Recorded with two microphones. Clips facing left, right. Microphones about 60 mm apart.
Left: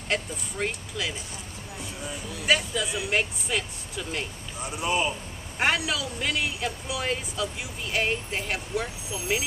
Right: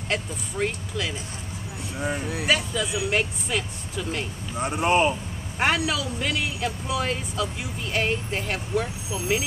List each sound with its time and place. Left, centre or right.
0.1 s speech: centre
2.0 s speech: right
2.4 s speech: centre
4.6 s speech: right
5.6 s speech: centre